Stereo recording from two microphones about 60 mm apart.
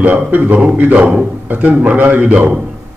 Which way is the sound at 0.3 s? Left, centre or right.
Right.